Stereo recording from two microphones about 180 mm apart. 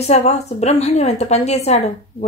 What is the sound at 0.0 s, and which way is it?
Speech, 40° left (ahead or behind).